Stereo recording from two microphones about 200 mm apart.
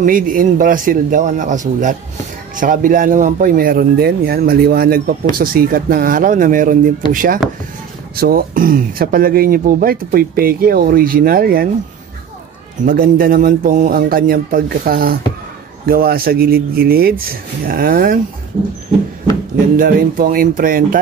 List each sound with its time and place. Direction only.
0.0 s a man's voice: 45° right (ahead or behind)
12.8 s speech: 45° right (ahead or behind)
19.8 s speech: 45° right (ahead or behind)